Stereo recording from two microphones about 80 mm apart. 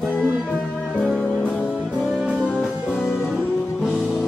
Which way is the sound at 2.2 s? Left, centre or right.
Centre.